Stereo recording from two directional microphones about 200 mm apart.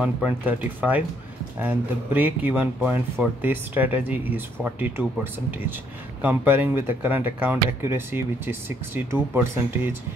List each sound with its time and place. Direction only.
0.0 s speech: 10° right (ahead or behind)